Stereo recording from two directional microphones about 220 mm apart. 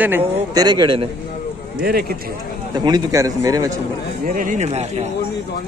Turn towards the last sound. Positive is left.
turn(degrees=-30)  # may be behind; listen again after turning